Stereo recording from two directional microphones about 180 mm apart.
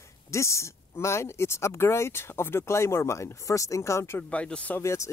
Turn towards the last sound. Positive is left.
turn(degrees=15)  # may be behind; listen again after turning